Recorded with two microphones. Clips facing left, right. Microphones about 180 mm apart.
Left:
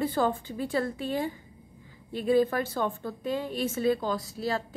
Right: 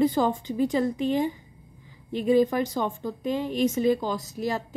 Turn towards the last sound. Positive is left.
turn(degrees=-15)  # may be behind; listen again after turning